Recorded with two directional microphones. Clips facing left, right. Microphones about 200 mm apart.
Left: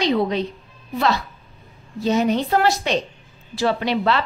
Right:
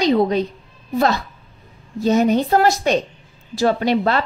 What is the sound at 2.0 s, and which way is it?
A woman's voice, 45° right (ahead or behind).